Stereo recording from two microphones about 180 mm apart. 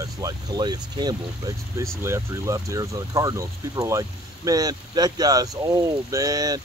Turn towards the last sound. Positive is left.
turn(degrees=-20)  # may be behind; listen again after turning